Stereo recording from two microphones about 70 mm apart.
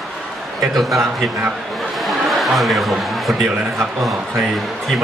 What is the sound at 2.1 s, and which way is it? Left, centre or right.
Chuckle, centre.